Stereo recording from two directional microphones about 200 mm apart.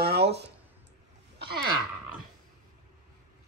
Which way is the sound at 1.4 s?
55° right (ahead or behind).